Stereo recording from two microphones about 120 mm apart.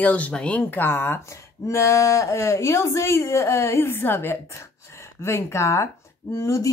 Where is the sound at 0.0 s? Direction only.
10° left (ahead or behind).